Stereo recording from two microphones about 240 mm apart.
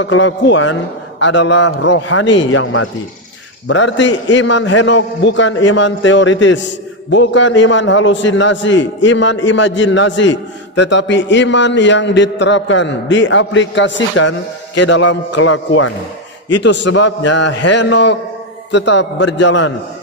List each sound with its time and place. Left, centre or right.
0.0 s a man's voice: left